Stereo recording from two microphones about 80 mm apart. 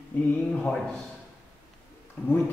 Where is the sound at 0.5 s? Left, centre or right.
Centre.